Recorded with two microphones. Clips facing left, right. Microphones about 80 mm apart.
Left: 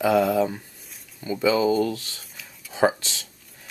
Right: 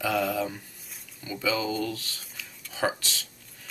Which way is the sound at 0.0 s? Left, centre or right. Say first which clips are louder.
Left 7 dB; left.